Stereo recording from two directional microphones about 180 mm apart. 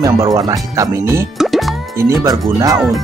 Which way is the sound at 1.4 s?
Centre (ahead or behind).